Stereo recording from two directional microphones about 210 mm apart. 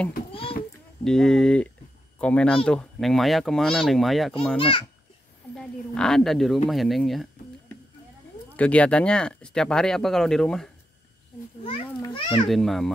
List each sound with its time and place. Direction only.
0.3 s a sound: 25° left (ahead or behind)
1.0 s speech: centre (ahead or behind)
4.6 s a child's voice: 25° left (ahead or behind)
5.6 s a woman's voice: 5° left (ahead or behind)
11.6 s a child's voice: 25° left (ahead or behind)
12.4 s speech: centre (ahead or behind)